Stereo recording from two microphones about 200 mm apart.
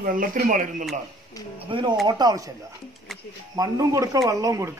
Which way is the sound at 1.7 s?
25° right (ahead or behind).